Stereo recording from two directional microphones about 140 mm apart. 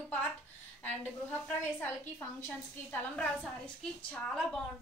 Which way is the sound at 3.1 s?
10° left (ahead or behind).